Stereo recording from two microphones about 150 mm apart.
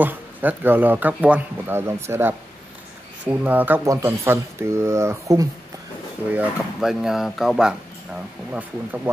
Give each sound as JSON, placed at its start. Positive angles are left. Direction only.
{"t": 0.0, "sound": "speech", "side_deg": -10}
{"t": 6.3, "sound": "speech", "side_deg": -5}